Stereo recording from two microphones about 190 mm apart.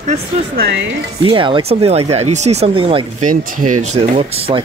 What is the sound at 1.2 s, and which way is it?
Speech, 25° right (ahead or behind).